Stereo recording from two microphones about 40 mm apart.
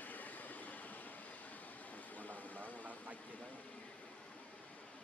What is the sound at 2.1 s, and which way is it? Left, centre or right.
Vehicle, left.